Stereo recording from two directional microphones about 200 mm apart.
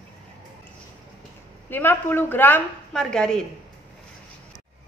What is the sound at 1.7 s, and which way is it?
Speech, 10° left (ahead or behind).